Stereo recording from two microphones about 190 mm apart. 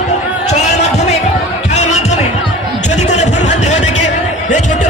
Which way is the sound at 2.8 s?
35° left (ahead or behind).